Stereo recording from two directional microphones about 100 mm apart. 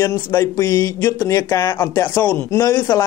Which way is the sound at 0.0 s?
25° left (ahead or behind).